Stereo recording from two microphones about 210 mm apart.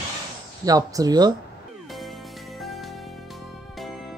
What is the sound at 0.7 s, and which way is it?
Speech, 15° right (ahead or behind).